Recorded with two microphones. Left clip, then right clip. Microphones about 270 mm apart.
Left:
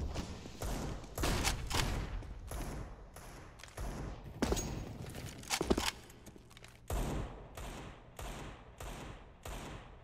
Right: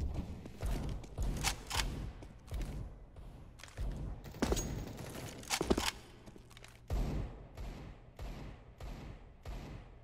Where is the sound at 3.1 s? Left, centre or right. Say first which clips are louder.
Left 9 dB; left.